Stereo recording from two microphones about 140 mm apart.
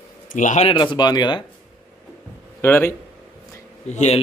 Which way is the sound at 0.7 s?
35° left (ahead or behind).